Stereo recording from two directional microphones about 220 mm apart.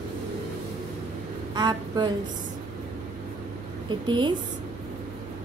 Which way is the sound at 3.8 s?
20° right (ahead or behind).